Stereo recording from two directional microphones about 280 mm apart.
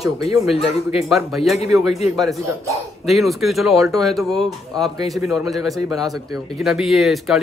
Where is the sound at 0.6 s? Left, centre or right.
Centre.